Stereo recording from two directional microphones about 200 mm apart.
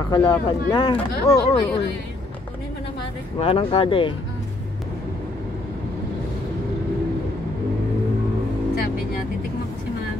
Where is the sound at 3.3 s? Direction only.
30° left (ahead or behind).